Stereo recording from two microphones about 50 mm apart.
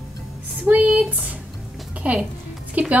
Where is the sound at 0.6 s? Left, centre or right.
Right.